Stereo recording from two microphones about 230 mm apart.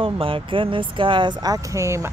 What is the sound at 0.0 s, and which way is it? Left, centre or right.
Speech, right.